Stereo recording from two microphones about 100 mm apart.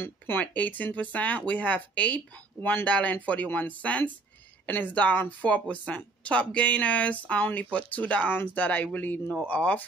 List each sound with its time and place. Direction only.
0.0 s speech: 20° left (ahead or behind)